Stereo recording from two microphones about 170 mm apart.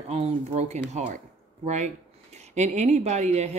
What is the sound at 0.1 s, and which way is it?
A woman's voice, 40° right (ahead or behind).